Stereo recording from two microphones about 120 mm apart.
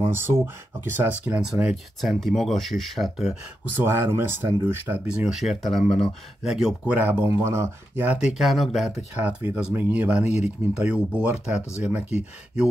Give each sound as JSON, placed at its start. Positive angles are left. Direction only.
{"t": 0.0, "sound": "speech", "side_deg": -20}
{"t": 3.7, "sound": "speech", "side_deg": -20}